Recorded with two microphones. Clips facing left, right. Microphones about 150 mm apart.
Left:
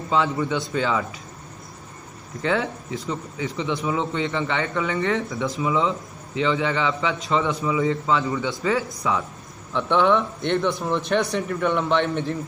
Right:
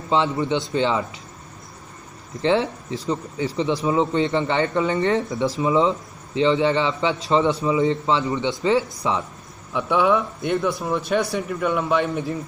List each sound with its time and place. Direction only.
0.1 s a man's voice: 25° right (ahead or behind)
2.4 s a man's voice: 30° right (ahead or behind)
9.7 s speech: 10° right (ahead or behind)